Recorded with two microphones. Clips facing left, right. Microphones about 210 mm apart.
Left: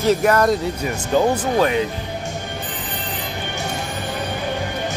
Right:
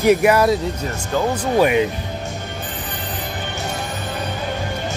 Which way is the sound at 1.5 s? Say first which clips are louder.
Right 5 dB; 15° right (ahead or behind).